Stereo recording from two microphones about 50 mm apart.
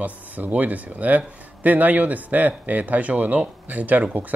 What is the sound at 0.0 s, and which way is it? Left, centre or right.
Speech, right.